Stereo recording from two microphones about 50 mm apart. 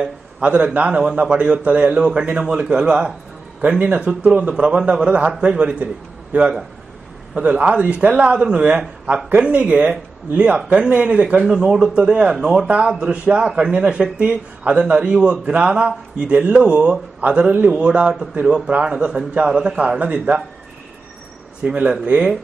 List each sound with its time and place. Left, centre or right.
0.4 s a man's voice: right
3.8 s a man's voice: right
7.3 s a man's voice: right
11.4 s a man's voice: centre
12.4 s speech: centre
12.6 s a man's voice: right
17.2 s speech: right
17.6 s a man's voice: right
21.6 s a man's voice: right